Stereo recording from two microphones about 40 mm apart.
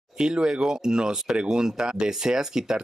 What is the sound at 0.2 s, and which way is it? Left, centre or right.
Speech, centre.